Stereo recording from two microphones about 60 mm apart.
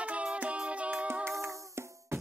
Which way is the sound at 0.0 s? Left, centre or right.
Centre.